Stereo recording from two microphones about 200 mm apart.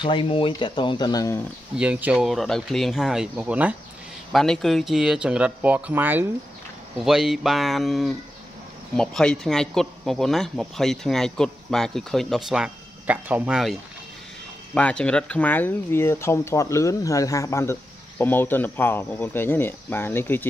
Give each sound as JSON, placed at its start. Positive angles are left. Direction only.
{"t": 0.0, "sound": "speech", "side_deg": 25}
{"t": 1.8, "sound": "speech", "side_deg": -5}